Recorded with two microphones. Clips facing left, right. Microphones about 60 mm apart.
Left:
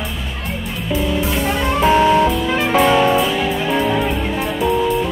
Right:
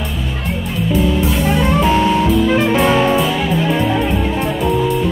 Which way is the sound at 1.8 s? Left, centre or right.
Centre.